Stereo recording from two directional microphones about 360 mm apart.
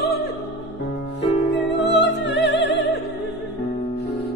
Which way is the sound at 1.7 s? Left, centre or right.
Left.